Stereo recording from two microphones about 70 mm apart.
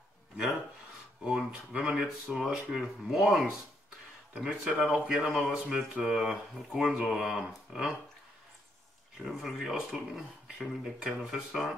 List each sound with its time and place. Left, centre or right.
1.2 s a sound: centre
2.3 s speech: centre
9.2 s speech: centre